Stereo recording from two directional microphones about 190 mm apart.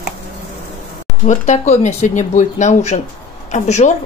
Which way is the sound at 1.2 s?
40° left (ahead or behind).